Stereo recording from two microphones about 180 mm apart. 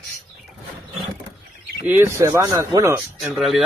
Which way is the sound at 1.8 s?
10° right (ahead or behind).